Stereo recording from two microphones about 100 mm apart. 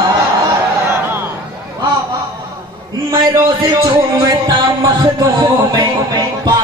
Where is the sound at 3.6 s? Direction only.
45° right (ahead or behind).